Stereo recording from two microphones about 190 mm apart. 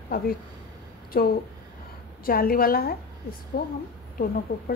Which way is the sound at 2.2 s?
50° left (ahead or behind).